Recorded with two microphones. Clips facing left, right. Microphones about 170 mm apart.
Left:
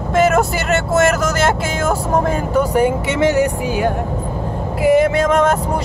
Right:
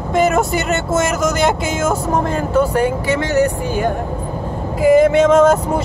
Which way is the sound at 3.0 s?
25° left (ahead or behind).